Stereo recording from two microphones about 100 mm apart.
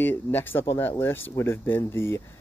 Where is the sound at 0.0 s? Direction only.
20° left (ahead or behind).